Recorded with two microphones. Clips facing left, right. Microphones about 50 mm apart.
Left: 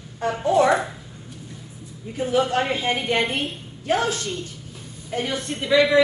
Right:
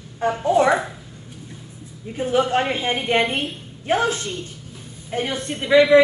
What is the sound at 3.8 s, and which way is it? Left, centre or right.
A woman's voice, right.